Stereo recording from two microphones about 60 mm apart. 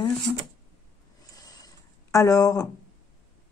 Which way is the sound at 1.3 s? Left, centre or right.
Left.